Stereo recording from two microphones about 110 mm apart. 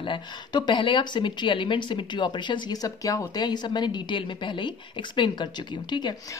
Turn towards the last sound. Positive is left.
turn(degrees=45)  # may be behind; listen again after turning